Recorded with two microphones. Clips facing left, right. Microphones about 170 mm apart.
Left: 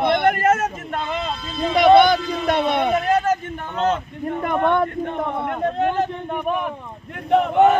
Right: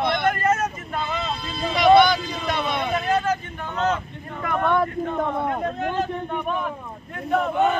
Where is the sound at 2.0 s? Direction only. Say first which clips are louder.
Left 3 dB; 55° left (ahead or behind).